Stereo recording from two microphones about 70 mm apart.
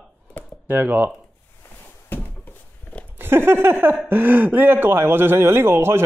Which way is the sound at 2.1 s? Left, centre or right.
Left.